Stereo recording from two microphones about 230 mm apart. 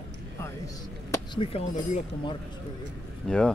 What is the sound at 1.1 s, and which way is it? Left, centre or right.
Speech, left.